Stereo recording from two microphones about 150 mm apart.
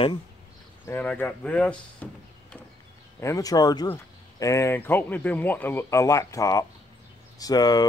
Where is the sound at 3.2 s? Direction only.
20° left (ahead or behind).